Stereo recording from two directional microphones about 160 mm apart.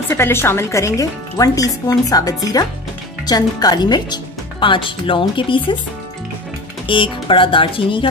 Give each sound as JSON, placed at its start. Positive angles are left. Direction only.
{"t": 0.1, "sound": "speech", "side_deg": 15}
{"t": 6.9, "sound": "speech", "side_deg": 30}